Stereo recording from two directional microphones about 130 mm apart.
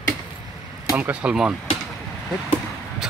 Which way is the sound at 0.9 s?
10° right (ahead or behind).